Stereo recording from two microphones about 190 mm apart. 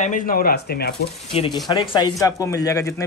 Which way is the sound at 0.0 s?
45° left (ahead or behind).